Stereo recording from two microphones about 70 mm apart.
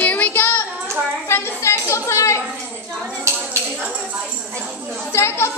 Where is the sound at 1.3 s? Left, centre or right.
Left.